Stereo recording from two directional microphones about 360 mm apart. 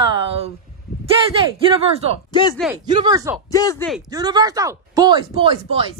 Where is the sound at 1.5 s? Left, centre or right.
Centre.